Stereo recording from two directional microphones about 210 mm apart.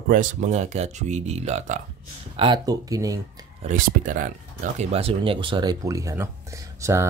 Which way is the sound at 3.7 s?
40° right (ahead or behind).